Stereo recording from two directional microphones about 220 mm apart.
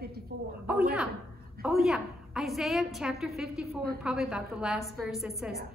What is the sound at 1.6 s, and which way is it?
A woman's voice, centre (ahead or behind).